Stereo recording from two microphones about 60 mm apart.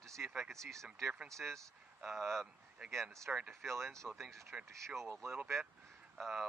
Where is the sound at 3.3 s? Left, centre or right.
Centre.